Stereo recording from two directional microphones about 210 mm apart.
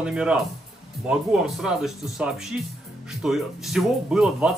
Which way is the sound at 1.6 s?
Centre (ahead or behind).